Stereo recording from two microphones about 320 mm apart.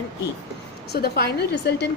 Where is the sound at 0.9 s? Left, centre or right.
Left.